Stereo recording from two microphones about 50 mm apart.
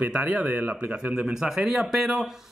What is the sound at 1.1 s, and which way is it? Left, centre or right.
Speech, centre.